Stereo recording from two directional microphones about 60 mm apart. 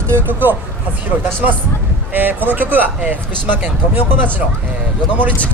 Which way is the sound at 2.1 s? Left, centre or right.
Right.